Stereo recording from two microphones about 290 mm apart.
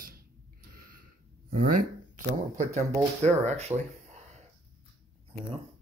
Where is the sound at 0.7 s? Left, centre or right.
Right.